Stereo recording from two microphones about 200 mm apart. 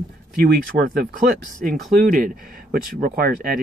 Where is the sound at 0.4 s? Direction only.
45° right (ahead or behind).